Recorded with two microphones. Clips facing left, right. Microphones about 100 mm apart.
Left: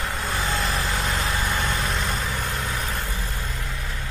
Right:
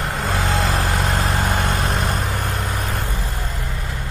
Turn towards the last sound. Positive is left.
turn(degrees=-60)  # may be behind; listen again after turning